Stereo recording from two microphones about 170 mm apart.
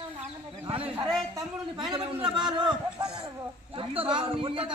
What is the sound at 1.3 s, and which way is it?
A woman's voice, 25° right (ahead or behind).